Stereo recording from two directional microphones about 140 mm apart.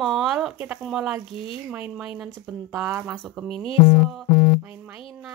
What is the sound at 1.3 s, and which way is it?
Speech, 40° left (ahead or behind).